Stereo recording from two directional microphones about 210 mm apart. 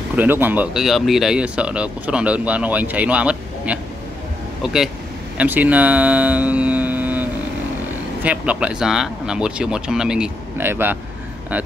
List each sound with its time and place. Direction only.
0.1 s speech: 10° right (ahead or behind)
5.4 s speech: 5° right (ahead or behind)